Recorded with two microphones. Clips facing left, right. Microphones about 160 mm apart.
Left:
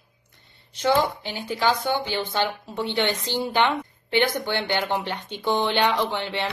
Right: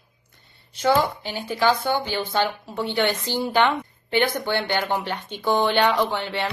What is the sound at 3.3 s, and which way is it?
A woman's voice, 20° left (ahead or behind).